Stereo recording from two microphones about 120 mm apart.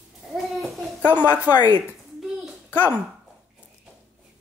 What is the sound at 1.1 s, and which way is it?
Speech, 10° right (ahead or behind).